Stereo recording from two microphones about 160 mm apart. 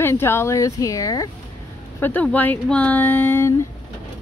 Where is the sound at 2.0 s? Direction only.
10° left (ahead or behind).